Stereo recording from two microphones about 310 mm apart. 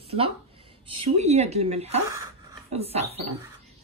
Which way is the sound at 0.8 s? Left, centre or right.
Right.